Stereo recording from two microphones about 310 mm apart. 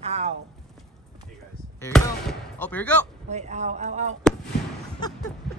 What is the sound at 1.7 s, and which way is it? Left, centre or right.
Speech, centre.